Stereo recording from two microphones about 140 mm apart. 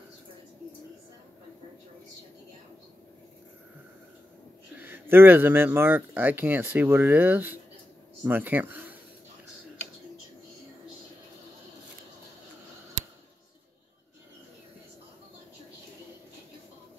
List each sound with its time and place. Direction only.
4.7 s speech: 15° right (ahead or behind)